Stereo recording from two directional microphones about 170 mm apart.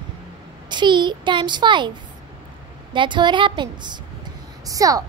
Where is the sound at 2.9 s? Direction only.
30° right (ahead or behind).